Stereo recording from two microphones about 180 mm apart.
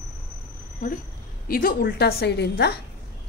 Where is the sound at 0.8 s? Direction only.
50° left (ahead or behind).